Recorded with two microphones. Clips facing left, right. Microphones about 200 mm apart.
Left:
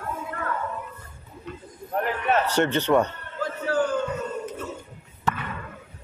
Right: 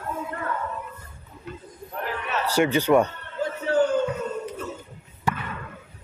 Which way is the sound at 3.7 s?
20° right (ahead or behind).